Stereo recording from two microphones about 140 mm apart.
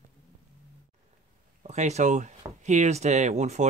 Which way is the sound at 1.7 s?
55° right (ahead or behind).